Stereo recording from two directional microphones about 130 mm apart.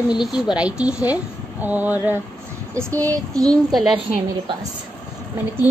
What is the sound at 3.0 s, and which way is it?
Child singing, 25° right (ahead or behind).